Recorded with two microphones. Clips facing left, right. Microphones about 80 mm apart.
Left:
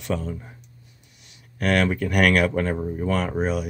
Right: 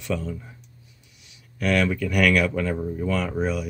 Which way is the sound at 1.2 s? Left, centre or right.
Left.